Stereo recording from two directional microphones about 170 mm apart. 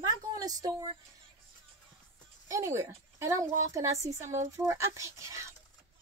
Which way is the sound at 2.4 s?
15° right (ahead or behind).